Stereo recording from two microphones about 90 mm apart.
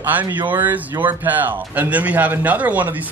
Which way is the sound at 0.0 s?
20° right (ahead or behind).